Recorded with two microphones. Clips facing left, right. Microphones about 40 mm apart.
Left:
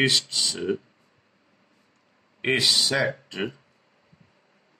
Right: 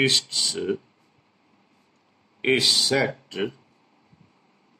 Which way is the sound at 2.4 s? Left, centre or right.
Centre.